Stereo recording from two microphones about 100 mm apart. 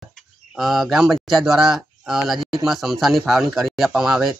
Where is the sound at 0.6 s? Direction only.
Centre (ahead or behind).